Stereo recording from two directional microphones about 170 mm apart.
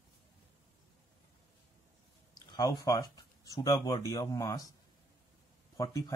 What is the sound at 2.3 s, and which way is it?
Speech, 25° left (ahead or behind).